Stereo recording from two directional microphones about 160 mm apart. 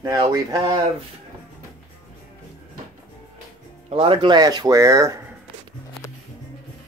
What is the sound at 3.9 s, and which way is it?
Speech, 35° right (ahead or behind).